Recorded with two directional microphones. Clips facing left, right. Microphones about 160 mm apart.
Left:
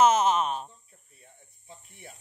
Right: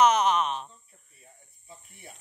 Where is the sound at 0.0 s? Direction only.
25° left (ahead or behind).